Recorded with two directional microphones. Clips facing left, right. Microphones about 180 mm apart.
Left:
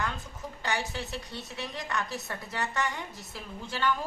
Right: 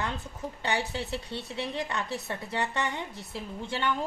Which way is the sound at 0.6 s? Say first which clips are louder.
Right 2 dB; 25° right (ahead or behind).